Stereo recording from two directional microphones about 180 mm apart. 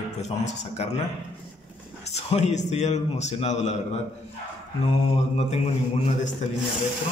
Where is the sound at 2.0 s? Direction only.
35° left (ahead or behind).